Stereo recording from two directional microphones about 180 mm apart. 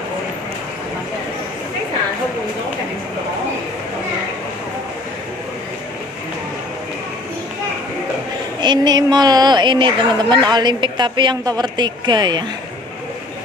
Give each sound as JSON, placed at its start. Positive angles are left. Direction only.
{"t": 8.5, "sound": "a woman's voice", "side_deg": -25}